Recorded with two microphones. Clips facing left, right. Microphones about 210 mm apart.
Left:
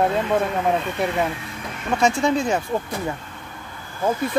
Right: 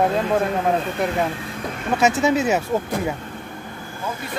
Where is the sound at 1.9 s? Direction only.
5° right (ahead or behind).